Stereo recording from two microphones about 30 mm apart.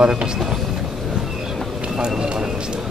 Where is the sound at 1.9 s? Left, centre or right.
Right.